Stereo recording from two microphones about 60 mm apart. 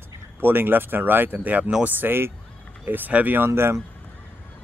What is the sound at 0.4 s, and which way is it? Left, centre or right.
Speech, right.